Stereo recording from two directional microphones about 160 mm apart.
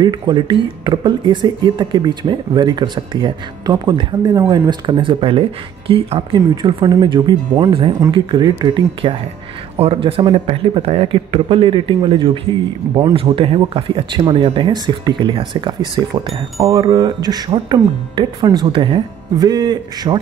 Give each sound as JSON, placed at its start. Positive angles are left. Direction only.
{"t": 0.0, "sound": "speech", "side_deg": -30}
{"t": 16.5, "sound": "speech", "side_deg": -20}